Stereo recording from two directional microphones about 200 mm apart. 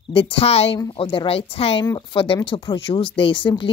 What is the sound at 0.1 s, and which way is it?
A woman's voice, 30° left (ahead or behind).